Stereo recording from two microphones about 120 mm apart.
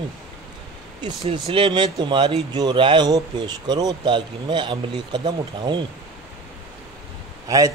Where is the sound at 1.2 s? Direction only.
50° right (ahead or behind).